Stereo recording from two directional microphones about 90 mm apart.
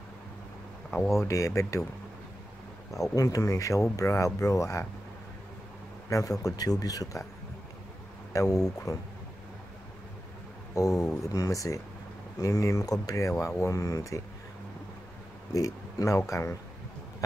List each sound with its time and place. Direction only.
1.1 s speech: 35° left (ahead or behind)
3.2 s speech: 35° left (ahead or behind)
6.0 s speech: 40° left (ahead or behind)
8.3 s speech: 40° left (ahead or behind)
10.7 s speech: 35° left (ahead or behind)
15.5 s speech: 35° left (ahead or behind)